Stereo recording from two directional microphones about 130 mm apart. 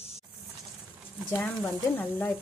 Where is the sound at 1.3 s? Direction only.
10° left (ahead or behind).